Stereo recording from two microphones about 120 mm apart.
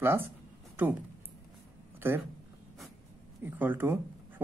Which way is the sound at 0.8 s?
15° right (ahead or behind).